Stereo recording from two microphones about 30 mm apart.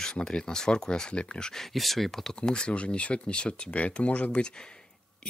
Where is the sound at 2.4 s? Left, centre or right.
Left.